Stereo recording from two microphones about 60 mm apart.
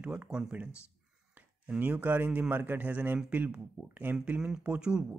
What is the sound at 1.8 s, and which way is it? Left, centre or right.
Speech, right.